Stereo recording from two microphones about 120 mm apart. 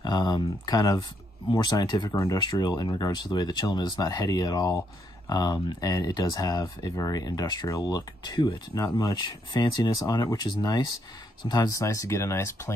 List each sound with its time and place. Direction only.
0.0 s speech: 35° left (ahead or behind)